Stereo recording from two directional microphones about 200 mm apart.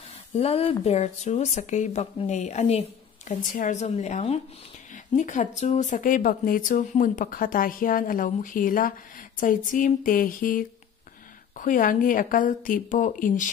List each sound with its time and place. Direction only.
0.4 s speech: 30° left (ahead or behind)